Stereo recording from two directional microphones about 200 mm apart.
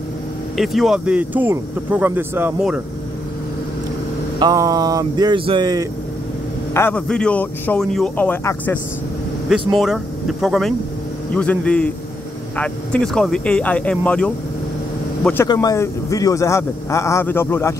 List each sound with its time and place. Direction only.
0.6 s speech: centre (ahead or behind)
4.4 s speech: 20° right (ahead or behind)
6.7 s a man's voice: 10° left (ahead or behind)
9.8 s speech: centre (ahead or behind)
15.4 s a man's voice: 20° left (ahead or behind)